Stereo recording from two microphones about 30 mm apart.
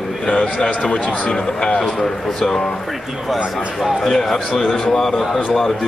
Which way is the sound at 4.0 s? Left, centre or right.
Centre.